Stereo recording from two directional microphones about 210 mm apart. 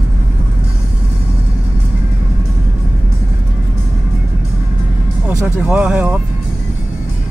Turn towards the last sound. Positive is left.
turn(degrees=-5)  # may be behind; listen again after turning